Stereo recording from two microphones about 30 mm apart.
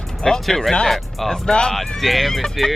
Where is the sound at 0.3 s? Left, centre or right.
Centre.